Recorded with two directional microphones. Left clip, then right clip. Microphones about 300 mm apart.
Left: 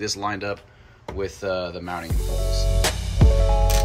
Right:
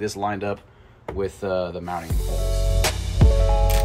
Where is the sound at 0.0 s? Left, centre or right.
Centre.